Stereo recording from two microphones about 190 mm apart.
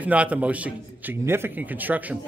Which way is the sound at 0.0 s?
5° right (ahead or behind).